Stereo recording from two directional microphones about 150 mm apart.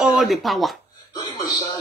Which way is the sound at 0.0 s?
Centre (ahead or behind).